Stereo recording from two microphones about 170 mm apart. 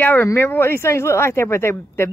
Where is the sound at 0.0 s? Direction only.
10° left (ahead or behind).